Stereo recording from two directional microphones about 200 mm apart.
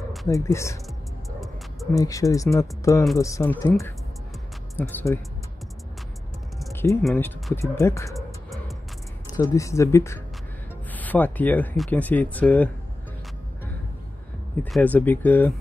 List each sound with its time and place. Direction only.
0.3 s speech: 15° left (ahead or behind)
2.0 s speech: 15° left (ahead or behind)
4.7 s speech: 10° left (ahead or behind)
6.7 s a sound: 15° left (ahead or behind)
7.0 s speech: 5° left (ahead or behind)
8.1 s music: centre (ahead or behind)
9.3 s speech: 15° left (ahead or behind)
14.6 s speech: 10° left (ahead or behind)